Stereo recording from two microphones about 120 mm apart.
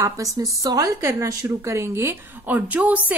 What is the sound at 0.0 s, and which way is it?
A woman's voice, 30° right (ahead or behind).